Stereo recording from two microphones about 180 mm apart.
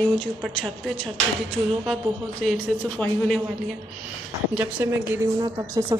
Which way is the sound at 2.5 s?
5° left (ahead or behind).